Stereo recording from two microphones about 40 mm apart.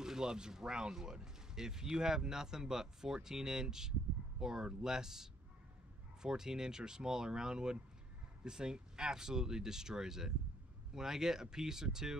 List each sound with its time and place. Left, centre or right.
0.0 s speech: centre